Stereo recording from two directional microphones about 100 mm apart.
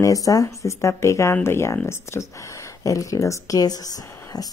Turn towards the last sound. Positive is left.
turn(degrees=40)  # may be behind; listen again after turning